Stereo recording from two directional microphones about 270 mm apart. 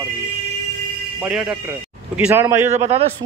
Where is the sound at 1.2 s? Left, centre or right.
Centre.